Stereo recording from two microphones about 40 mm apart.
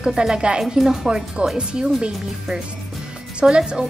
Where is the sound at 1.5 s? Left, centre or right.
Right.